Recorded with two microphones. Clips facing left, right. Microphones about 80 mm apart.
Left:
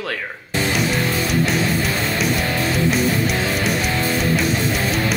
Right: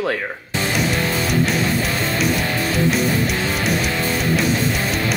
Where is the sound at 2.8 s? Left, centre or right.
Centre.